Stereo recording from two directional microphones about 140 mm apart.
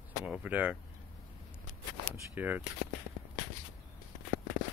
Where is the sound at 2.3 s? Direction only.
15° right (ahead or behind).